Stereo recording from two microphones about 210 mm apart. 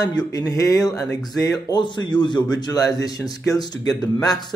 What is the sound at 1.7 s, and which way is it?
A man's voice, 20° left (ahead or behind).